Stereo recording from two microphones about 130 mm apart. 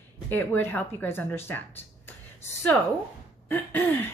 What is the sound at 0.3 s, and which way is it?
A woman's voice, 15° left (ahead or behind).